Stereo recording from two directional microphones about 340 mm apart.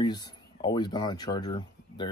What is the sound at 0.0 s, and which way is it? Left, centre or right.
Speech, centre.